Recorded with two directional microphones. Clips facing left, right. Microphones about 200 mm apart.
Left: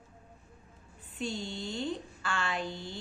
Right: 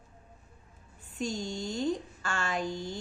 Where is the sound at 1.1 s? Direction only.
45° right (ahead or behind).